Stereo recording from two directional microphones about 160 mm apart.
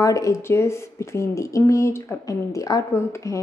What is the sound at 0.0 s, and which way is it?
Speech, 20° left (ahead or behind).